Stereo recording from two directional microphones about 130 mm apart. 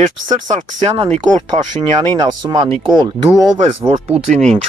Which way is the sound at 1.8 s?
35° right (ahead or behind).